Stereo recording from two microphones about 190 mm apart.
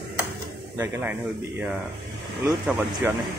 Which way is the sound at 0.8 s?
10° right (ahead or behind).